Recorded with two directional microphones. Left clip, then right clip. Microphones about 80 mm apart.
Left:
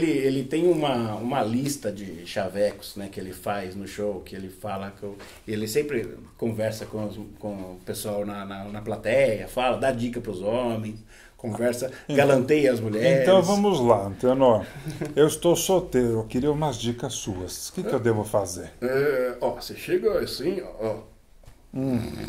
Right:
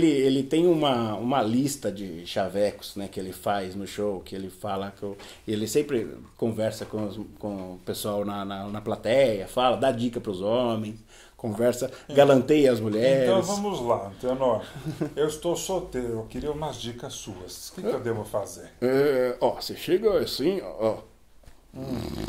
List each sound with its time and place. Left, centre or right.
0.0 s speech: right
13.5 s speech: left
18.8 s speech: right
21.9 s speech: right